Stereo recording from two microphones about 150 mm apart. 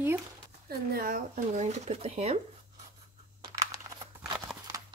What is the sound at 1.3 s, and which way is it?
Speech, 50° right (ahead or behind).